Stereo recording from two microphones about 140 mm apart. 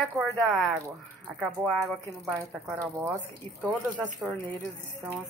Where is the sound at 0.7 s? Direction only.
20° right (ahead or behind).